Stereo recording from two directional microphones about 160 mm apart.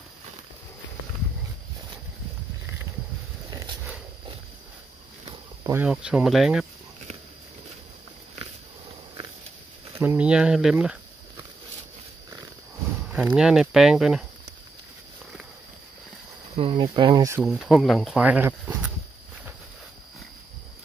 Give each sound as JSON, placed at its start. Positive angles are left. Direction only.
{"t": 3.4, "sound": "a sound", "side_deg": -25}
{"t": 5.6, "sound": "cricket", "side_deg": -15}
{"t": 5.9, "sound": "speech", "side_deg": -5}
{"t": 9.9, "sound": "speech", "side_deg": -10}
{"t": 13.1, "sound": "speech", "side_deg": -10}
{"t": 16.5, "sound": "speech", "side_deg": -30}
{"t": 17.4, "sound": "speech", "side_deg": 0}